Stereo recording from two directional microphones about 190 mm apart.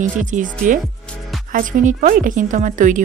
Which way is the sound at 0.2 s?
40° right (ahead or behind).